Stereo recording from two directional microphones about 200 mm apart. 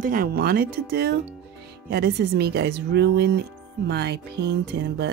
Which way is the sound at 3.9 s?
55° right (ahead or behind).